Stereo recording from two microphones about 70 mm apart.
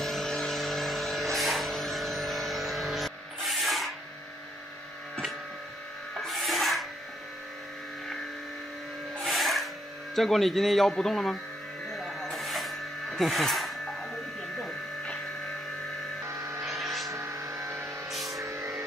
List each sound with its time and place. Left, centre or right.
0.0 s vehicle: centre
6.1 s music: centre
9.2 s music: centre
10.1 s speech: centre
11.9 s a sound: centre
13.2 s speech: centre
14.6 s electric shaver: centre
16.3 s vehicle: right
16.6 s vehicle: centre
17.1 s vehicle: right
18.1 s music: centre
18.4 s music: right